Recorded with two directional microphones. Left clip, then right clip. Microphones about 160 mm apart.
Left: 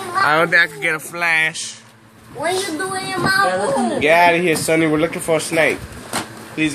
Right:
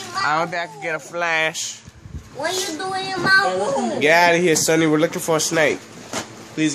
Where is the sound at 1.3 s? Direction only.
40° right (ahead or behind).